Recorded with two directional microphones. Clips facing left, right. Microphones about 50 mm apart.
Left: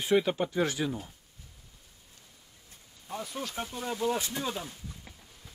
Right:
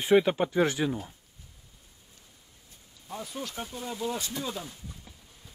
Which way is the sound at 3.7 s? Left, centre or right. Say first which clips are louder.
Left 3 dB; left.